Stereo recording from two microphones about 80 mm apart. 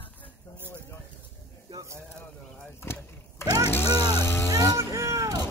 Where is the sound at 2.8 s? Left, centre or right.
Left.